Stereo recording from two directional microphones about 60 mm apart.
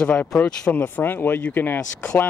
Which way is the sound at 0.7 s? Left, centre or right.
Left.